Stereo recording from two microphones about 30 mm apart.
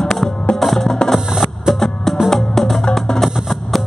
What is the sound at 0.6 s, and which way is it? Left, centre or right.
Music, centre.